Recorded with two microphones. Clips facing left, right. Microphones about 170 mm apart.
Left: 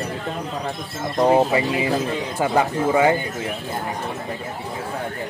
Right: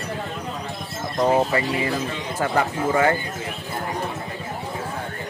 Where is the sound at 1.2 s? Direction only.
15° left (ahead or behind).